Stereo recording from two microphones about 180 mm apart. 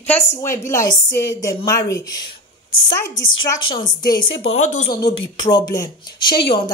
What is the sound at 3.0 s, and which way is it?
Speech, 90° left.